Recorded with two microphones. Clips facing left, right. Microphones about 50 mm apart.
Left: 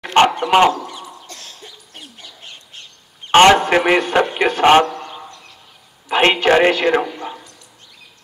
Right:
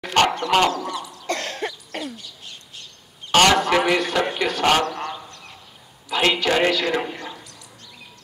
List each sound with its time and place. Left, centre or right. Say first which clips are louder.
0.0 s dog: left 5 dB; left
1.2 s cough: right 12 dB; right
2.1 s bird: left 1 dB; left
3.3 s a man's voice: left 6 dB; left
6.0 s a man's voice: left 6 dB; left